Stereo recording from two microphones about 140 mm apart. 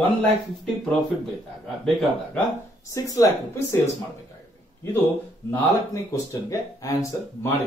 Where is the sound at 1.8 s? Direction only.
5° left (ahead or behind).